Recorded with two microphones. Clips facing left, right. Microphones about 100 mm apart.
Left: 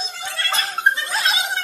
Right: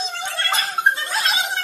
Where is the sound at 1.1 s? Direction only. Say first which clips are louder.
Even; centre (ahead or behind).